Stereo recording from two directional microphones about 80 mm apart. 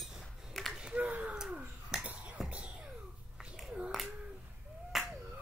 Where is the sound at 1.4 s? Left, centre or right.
Centre.